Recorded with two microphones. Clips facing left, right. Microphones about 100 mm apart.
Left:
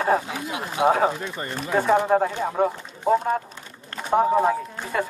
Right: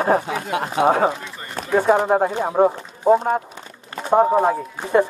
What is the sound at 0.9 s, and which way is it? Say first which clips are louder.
Speech: right 2 dB; 25° right (ahead or behind).